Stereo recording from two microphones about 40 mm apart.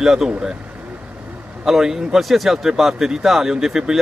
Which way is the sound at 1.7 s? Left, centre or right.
Centre.